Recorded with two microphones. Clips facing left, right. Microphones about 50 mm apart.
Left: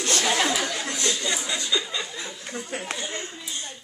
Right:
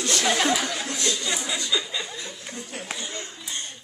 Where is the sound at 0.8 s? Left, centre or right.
Centre.